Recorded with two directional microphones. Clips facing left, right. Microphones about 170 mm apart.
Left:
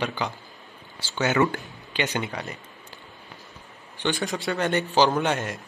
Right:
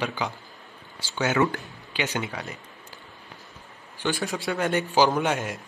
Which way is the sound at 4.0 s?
5° right (ahead or behind).